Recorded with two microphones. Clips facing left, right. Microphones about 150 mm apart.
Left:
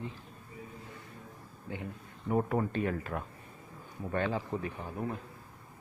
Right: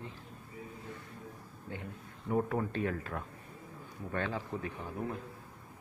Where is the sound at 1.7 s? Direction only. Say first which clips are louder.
Left 3 dB; 10° left (ahead or behind).